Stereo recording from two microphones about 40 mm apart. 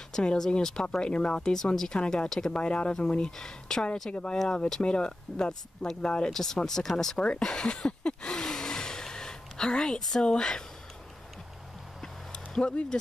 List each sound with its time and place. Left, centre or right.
0.1 s speech: left
0.8 s speech: left
2.0 s speech: left
2.2 s speech: centre
2.5 s speech: left
3.3 s speech: centre
7.2 s speech: left
12.0 s a sound: left